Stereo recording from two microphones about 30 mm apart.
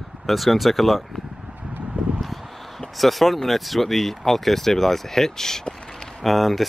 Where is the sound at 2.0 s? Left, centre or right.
Right.